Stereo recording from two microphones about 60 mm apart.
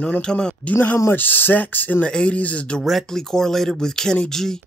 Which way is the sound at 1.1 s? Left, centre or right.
Left.